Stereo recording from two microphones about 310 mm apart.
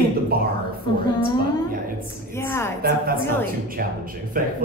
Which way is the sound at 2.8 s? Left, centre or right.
Right.